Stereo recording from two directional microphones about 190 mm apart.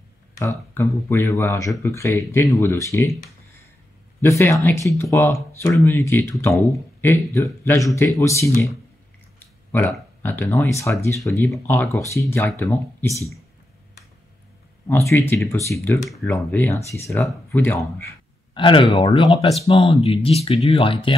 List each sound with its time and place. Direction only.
0.4 s speech: 15° left (ahead or behind)
4.2 s speech: 15° left (ahead or behind)
9.7 s speech: 10° left (ahead or behind)
14.9 s speech: 10° left (ahead or behind)
15.9 s speech: centre (ahead or behind)
18.5 s speech: 25° left (ahead or behind)